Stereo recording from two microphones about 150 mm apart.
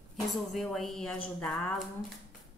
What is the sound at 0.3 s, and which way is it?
A woman's voice, centre (ahead or behind).